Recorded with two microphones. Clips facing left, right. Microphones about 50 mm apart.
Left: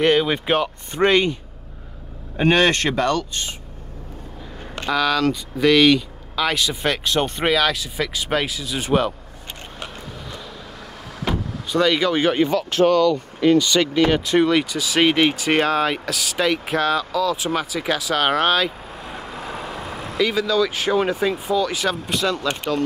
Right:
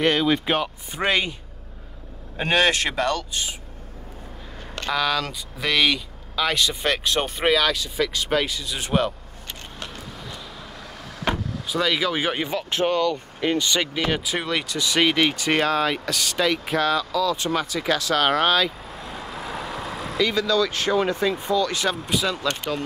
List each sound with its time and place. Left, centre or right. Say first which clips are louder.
0.0 s speech: left 2 dB; centre
0.6 s speech: left 6 dB; centre
4.9 s speech: left 5 dB; centre
11.6 s speech: left 5 dB; centre; by 13.8 s right
13.9 s speech: left 8 dB; centre
18.9 s vehicle: left 1 dB; centre
20.2 s speech: left 2 dB; centre